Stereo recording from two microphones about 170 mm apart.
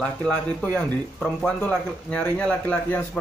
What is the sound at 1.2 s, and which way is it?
Speech, 5° left (ahead or behind).